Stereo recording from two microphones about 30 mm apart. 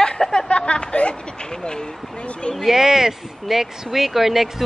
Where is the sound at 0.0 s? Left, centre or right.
Left.